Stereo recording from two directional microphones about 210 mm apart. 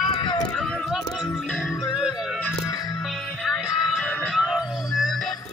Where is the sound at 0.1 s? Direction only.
20° left (ahead or behind).